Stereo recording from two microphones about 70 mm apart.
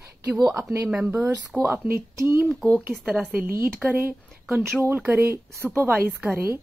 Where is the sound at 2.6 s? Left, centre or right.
Centre.